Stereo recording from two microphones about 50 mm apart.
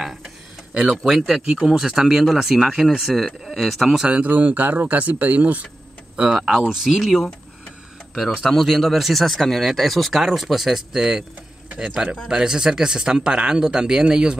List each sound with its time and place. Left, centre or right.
0.0 s a sound: centre
1.0 s speech: centre
4.0 s speech: right
6.3 s speech: centre
7.0 s speech: centre
8.5 s speech: centre